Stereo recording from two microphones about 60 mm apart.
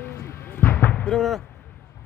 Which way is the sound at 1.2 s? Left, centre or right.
Centre.